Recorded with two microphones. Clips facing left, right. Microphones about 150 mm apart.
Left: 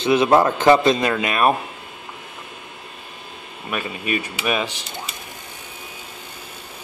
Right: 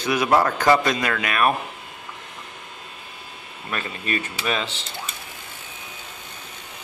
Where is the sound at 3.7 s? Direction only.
10° left (ahead or behind).